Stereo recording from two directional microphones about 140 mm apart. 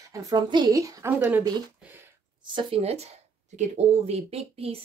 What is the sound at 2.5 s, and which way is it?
Speech, 45° right (ahead or behind).